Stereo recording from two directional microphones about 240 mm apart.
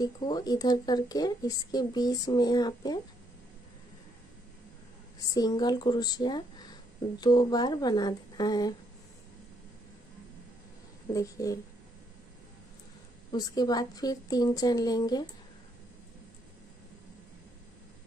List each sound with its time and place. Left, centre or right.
0.0 s speech: centre
5.3 s speech: centre
11.1 s speech: centre
13.3 s speech: centre